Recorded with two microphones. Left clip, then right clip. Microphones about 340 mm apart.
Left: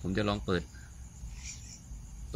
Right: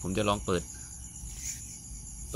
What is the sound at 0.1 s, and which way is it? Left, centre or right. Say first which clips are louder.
Speech: right 3 dB; centre.